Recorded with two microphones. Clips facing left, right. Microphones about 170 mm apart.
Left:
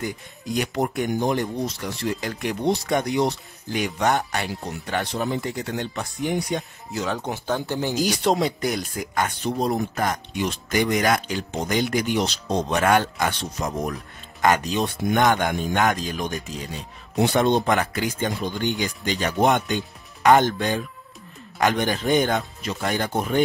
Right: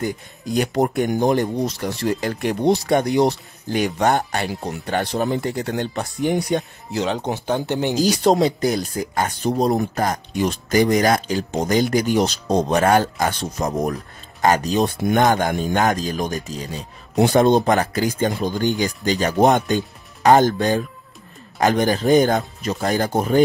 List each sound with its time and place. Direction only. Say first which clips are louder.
0.0 s speech: right 5 dB; 35° right (ahead or behind)
7.0 s speech: right 4 dB; 25° right (ahead or behind)
8.0 s speech: right 5 dB; 40° right (ahead or behind)